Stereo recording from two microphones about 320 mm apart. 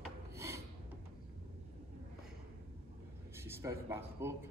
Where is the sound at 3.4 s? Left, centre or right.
Centre.